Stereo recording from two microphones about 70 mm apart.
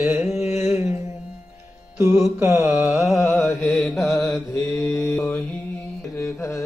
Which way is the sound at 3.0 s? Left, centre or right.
Centre.